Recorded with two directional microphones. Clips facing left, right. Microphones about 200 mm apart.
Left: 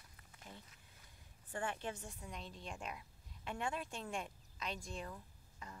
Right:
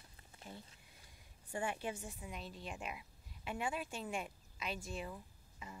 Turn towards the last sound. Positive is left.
turn(degrees=-10)  # may be behind; listen again after turning